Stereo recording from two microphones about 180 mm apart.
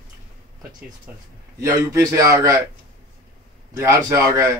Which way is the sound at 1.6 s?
15° right (ahead or behind).